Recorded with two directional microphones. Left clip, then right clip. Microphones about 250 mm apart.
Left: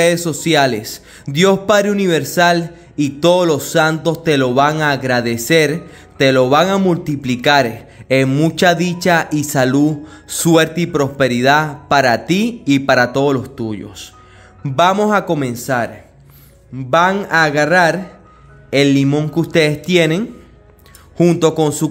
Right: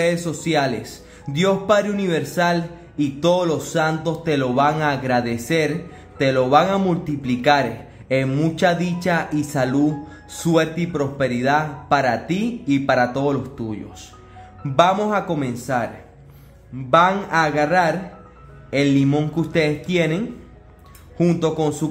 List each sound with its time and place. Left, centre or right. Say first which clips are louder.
0.0 s a man's voice: left 7 dB; left
16.9 s a man's voice: left 3 dB; left